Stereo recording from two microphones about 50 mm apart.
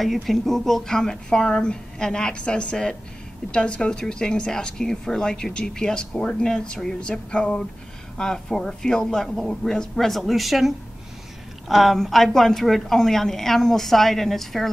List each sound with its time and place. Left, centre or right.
0.0 s speech: centre
7.0 s a sound: centre
8.2 s a woman's voice: centre